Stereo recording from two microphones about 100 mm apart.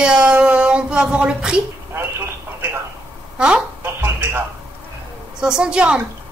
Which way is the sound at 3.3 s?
10° right (ahead or behind).